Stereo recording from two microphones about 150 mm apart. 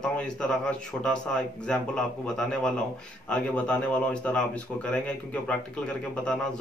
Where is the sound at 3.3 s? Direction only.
5° left (ahead or behind).